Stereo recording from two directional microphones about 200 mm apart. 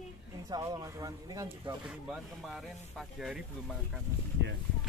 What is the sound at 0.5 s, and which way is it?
Speech, 20° right (ahead or behind).